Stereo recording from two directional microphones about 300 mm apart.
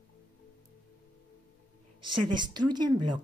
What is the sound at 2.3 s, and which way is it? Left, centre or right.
Speech, centre.